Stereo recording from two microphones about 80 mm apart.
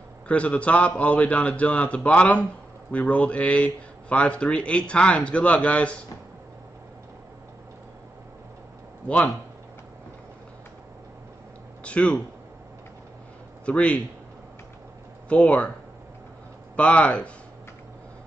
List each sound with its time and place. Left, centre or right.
0.3 s speech: centre
9.0 s a man's voice: centre
11.8 s speech: centre
13.7 s speech: centre
15.2 s speech: centre
16.7 s speech: centre